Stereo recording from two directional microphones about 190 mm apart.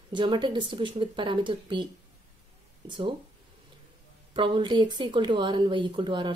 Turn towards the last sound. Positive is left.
turn(degrees=-25)  # may be behind; listen again after turning